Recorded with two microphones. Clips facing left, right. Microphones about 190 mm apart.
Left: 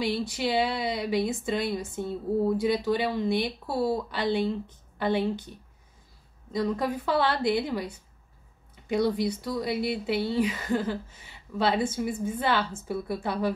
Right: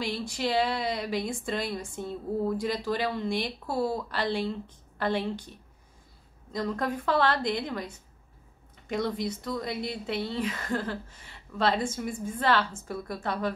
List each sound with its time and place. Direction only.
0.0 s speech: 5° left (ahead or behind)
6.5 s speech: 5° left (ahead or behind)